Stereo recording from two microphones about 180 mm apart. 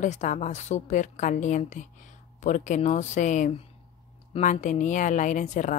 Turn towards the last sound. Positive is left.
turn(degrees=45)  # may be behind; listen again after turning